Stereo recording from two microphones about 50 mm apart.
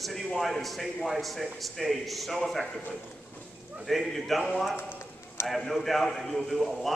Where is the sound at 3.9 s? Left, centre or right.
Centre.